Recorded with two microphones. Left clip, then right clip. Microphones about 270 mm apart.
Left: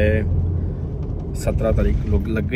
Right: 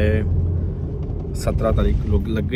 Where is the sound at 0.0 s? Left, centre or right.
Centre.